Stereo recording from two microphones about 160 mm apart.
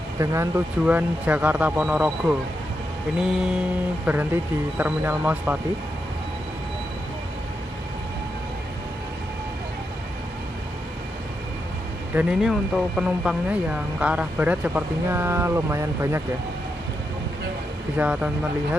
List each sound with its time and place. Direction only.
0.2 s speech: 20° right (ahead or behind)
12.2 s speech: 5° right (ahead or behind)
17.9 s speech: 10° right (ahead or behind)